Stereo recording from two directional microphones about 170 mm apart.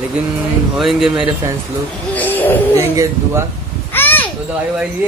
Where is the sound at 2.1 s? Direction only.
10° left (ahead or behind).